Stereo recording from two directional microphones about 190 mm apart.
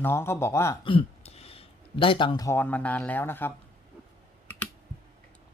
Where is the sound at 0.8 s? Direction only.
30° left (ahead or behind); by 3.5 s 10° left (ahead or behind).